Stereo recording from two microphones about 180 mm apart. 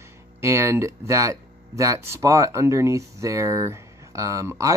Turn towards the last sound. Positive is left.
turn(degrees=-15)  # may be behind; listen again after turning